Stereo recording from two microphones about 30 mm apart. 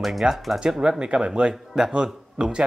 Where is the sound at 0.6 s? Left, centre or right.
Right.